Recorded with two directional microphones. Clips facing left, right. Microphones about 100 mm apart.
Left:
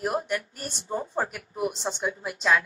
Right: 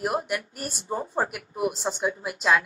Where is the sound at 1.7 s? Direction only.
35° right (ahead or behind).